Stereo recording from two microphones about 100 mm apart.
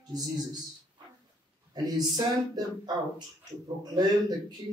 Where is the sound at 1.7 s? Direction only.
40° right (ahead or behind).